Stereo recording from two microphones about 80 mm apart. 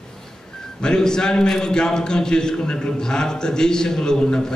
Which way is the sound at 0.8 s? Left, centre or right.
Centre.